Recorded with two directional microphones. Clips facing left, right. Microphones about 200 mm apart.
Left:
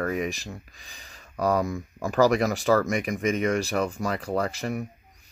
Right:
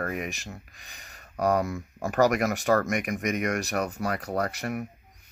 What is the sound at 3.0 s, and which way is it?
Speech, 30° left (ahead or behind).